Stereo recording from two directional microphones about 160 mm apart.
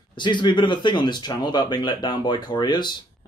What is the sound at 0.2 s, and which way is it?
Speech, 30° left (ahead or behind).